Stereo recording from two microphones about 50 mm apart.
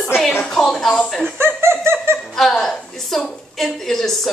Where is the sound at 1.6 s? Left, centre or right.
Right.